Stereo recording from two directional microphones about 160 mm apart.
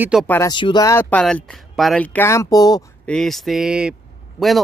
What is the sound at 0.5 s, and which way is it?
Speech, 30° left (ahead or behind).